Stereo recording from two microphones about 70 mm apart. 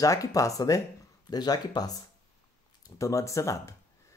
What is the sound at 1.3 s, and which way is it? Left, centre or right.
Speech, left.